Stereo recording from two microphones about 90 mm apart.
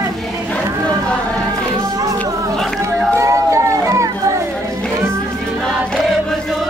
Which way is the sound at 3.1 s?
35° right (ahead or behind).